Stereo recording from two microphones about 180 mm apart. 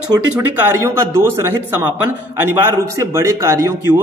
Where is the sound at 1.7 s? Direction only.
10° right (ahead or behind).